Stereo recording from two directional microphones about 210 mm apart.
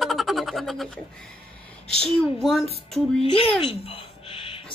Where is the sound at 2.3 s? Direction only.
Centre (ahead or behind).